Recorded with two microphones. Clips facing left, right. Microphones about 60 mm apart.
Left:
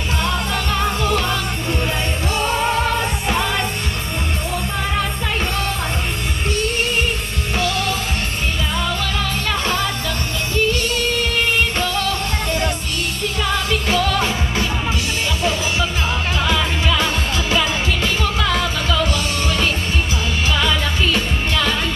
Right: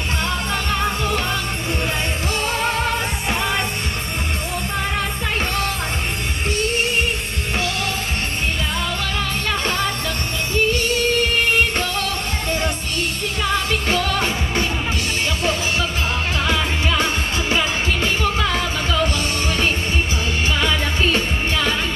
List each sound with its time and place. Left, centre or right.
0.7 s music: right
7.5 s music: right
9.5 s music: right
16.3 s music: right
20.5 s music: right